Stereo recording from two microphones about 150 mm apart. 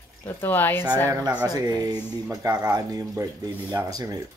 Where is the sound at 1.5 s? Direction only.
25° right (ahead or behind).